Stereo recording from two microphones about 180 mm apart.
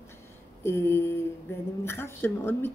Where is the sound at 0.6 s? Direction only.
15° left (ahead or behind).